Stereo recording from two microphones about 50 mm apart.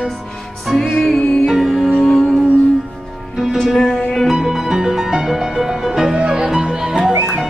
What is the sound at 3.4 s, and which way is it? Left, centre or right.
Music, centre.